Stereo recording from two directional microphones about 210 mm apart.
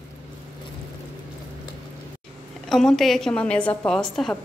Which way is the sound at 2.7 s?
Centre (ahead or behind).